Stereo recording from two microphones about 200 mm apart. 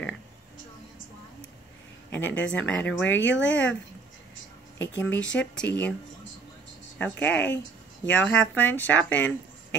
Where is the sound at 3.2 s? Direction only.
65° left (ahead or behind).